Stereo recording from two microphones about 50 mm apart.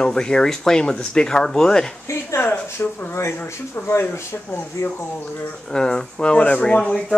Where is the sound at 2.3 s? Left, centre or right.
Left.